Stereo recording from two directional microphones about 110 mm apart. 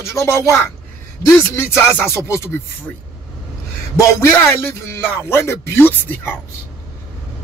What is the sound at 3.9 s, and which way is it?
A man's voice, 25° left (ahead or behind).